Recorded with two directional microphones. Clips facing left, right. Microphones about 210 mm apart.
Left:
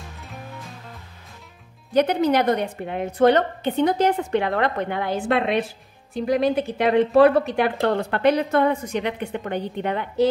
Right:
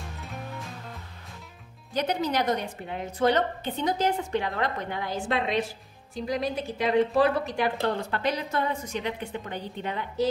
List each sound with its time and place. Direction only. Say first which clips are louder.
0.2 s music: even; centre (ahead or behind)
2.0 s a woman's voice: left 8 dB; 60° left (ahead or behind)